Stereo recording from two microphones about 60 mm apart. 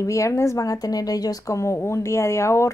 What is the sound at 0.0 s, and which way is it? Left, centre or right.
A woman's voice, left.